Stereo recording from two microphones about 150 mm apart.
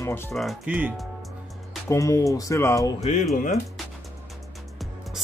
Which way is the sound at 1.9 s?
20° left (ahead or behind).